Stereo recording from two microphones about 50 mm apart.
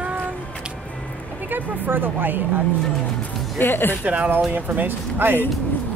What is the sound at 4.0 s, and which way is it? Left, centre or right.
A woman's voice, right.